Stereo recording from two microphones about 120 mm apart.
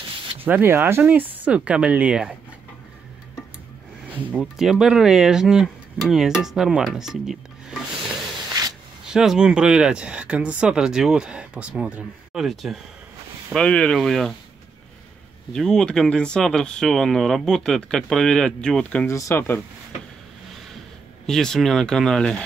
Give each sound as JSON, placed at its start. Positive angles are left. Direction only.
{"t": 0.4, "sound": "speech", "side_deg": -15}
{"t": 4.1, "sound": "speech", "side_deg": -10}
{"t": 8.5, "sound": "spray", "side_deg": -30}
{"t": 9.0, "sound": "speech", "side_deg": -5}
{"t": 15.5, "sound": "speech", "side_deg": 5}
{"t": 19.0, "sound": "speech", "side_deg": 25}
{"t": 21.3, "sound": "speech", "side_deg": 5}